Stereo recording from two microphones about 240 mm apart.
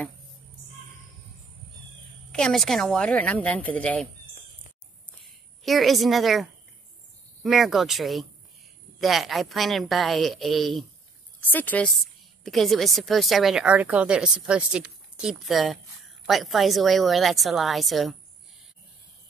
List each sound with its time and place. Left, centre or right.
2.3 s a woman's voice: centre
5.6 s a woman's voice: centre